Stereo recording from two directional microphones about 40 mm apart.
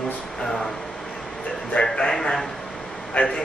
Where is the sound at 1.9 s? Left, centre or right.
Left.